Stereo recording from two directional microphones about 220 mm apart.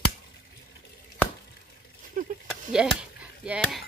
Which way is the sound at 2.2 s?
40° right (ahead or behind).